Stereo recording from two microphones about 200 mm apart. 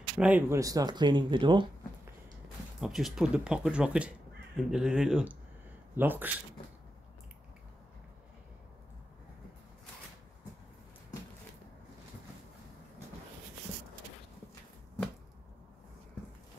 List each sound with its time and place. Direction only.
0.2 s speech: 10° right (ahead or behind)
2.8 s speech: centre (ahead or behind)